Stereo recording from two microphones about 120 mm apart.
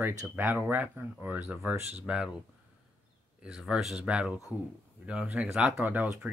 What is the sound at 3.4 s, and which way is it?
Speech, 5° right (ahead or behind).